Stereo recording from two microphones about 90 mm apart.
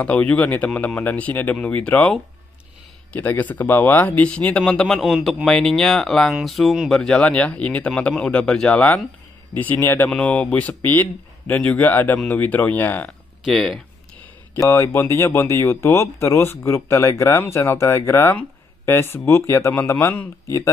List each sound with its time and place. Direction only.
0.0 s speech: 15° left (ahead or behind)
13.4 s speech: centre (ahead or behind)
14.6 s speech: 30° left (ahead or behind)